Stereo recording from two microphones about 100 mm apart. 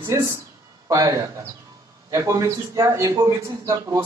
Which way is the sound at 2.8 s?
35° right (ahead or behind).